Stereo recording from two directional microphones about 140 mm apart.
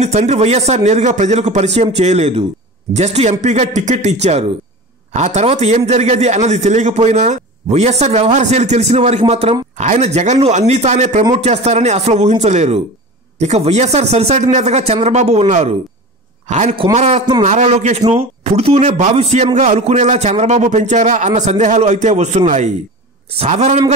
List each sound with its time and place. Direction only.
0.0 s a man's voice: 50° right (ahead or behind)